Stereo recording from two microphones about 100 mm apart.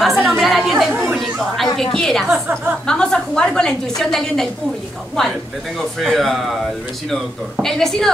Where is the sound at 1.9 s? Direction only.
5° left (ahead or behind).